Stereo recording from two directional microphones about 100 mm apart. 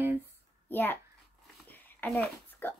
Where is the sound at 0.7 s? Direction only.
20° left (ahead or behind).